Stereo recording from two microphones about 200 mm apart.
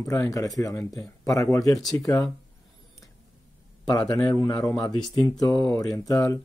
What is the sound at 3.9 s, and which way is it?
A man's voice, 20° left (ahead or behind).